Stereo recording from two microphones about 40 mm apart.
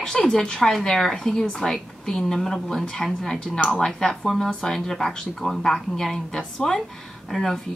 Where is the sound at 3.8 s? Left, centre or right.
Centre.